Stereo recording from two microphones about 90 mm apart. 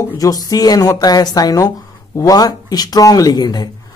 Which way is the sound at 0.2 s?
45° left (ahead or behind).